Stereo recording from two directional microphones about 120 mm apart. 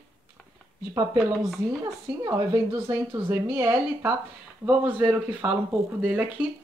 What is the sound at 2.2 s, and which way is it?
Speech, 20° right (ahead or behind).